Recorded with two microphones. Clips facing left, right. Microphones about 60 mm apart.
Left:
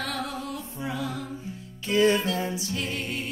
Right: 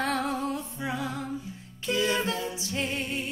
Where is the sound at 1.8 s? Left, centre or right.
Left.